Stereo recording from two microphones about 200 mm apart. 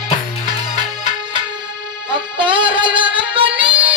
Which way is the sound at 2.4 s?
5° right (ahead or behind).